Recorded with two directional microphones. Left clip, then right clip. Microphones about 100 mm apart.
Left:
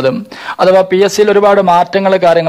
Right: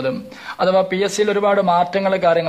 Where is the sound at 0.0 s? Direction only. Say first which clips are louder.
Left 9 dB; 60° left (ahead or behind).